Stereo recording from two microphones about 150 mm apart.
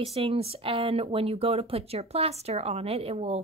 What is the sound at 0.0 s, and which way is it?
Speech, 40° right (ahead or behind).